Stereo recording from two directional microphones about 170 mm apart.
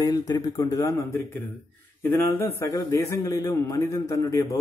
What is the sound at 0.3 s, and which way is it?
A man's voice, 20° left (ahead or behind).